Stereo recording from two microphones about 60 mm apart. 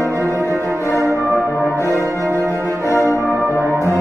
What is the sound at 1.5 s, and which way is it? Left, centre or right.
Music, left.